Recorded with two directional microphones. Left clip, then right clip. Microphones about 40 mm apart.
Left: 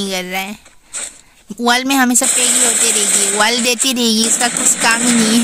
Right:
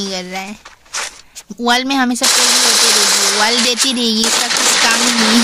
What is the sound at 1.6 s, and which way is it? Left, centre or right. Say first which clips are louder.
Speech: left 1 dB; left.